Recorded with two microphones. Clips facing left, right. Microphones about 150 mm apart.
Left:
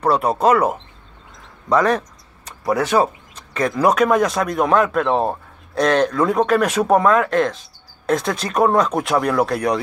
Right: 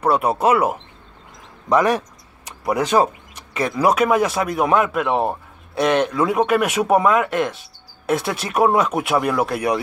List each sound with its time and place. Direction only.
0.0 s speech: 5° right (ahead or behind)
3.5 s speech: 5° right (ahead or behind)